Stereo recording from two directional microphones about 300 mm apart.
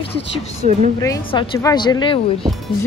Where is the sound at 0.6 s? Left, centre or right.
Right.